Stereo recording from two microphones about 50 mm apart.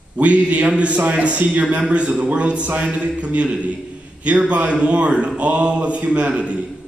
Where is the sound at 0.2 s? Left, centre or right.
Right.